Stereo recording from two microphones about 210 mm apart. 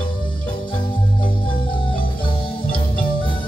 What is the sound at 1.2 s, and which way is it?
Marimba, 25° left (ahead or behind).